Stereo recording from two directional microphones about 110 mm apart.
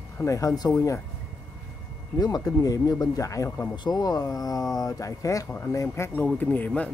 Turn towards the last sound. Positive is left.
turn(degrees=15)  # may be behind; listen again after turning